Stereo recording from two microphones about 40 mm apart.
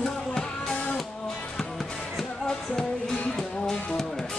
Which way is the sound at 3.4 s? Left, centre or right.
Centre.